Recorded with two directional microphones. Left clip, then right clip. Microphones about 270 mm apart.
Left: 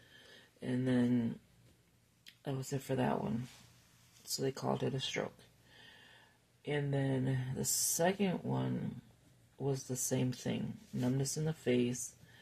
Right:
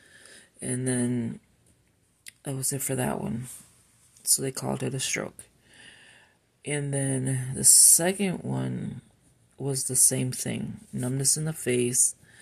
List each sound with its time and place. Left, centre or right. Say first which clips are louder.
0.3 s speech: right 5 dB; right
4.4 s speech: right 5 dB; right
5.8 s a sound: right 8 dB; right
6.6 s speech: right 6 dB; right